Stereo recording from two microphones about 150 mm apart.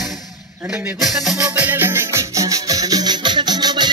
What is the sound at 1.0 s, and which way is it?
Music, centre (ahead or behind).